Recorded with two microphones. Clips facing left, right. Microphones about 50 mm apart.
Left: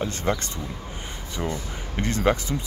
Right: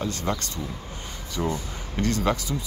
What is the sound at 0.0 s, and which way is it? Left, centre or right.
Speech, left.